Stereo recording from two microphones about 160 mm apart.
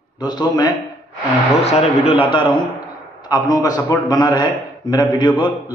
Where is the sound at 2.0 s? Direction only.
35° left (ahead or behind).